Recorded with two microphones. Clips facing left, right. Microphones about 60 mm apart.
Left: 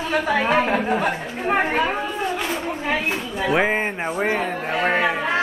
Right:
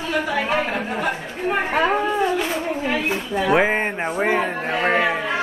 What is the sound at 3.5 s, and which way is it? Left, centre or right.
A man's voice, centre.